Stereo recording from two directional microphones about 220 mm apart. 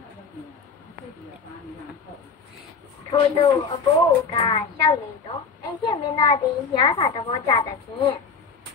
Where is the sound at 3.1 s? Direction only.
25° left (ahead or behind).